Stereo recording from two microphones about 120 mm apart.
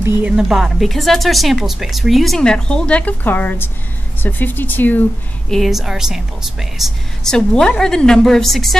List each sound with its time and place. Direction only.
0.4 s speech: centre (ahead or behind); by 5.0 s 15° left (ahead or behind)
5.5 s speech: centre (ahead or behind)